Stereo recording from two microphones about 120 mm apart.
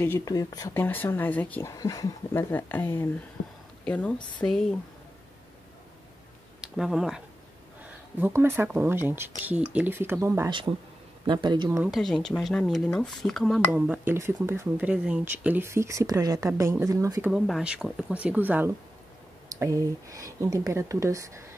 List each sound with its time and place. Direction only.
0.2 s speech: 30° left (ahead or behind)
0.7 s a woman's voice: 15° left (ahead or behind)
1.8 s speech: 30° left (ahead or behind)
2.5 s a woman's voice: 15° left (ahead or behind)
6.6 s speech: 5° right (ahead or behind)
7.8 s speech: 20° right (ahead or behind)
11.2 s speech: 40° right (ahead or behind)
11.9 s speech: 5° left (ahead or behind)
13.7 s speech: 10° right (ahead or behind); by 17.2 s 30° right (ahead or behind)
17.3 s speech: 5° right (ahead or behind)
19.5 s speech: 25° right (ahead or behind)